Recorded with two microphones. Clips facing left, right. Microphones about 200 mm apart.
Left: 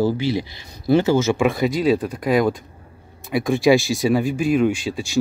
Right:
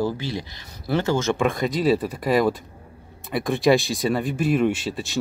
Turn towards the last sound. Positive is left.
turn(degrees=0)  # may be behind; listen again after turning